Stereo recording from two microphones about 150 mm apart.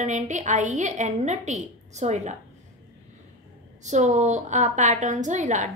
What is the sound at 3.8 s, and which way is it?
A woman's voice, 50° right (ahead or behind).